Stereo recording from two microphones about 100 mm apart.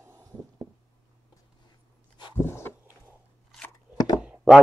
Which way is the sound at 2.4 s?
25° left (ahead or behind).